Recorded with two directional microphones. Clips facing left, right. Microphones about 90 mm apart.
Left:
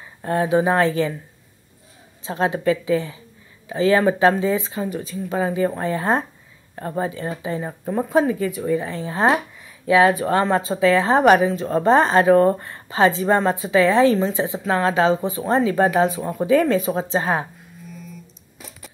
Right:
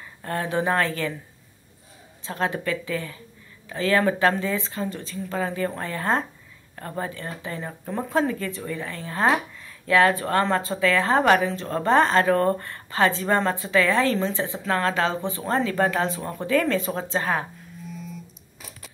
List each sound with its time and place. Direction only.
0.2 s speech: 20° left (ahead or behind)
2.2 s speech: 20° left (ahead or behind)